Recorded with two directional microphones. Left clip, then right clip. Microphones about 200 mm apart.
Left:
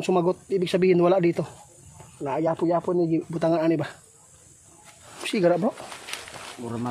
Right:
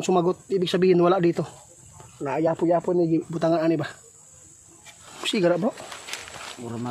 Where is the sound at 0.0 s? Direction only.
10° right (ahead or behind).